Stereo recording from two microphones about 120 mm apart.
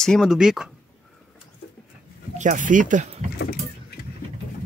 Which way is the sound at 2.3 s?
90° right.